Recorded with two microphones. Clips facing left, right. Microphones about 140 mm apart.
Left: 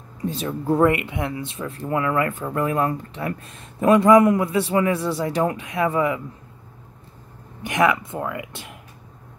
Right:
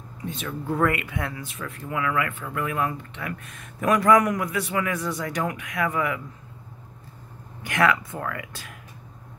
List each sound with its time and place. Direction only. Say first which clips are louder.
0.2 s speech: left 6 dB; 35° left (ahead or behind)
7.6 s speech: left 3 dB; 20° left (ahead or behind)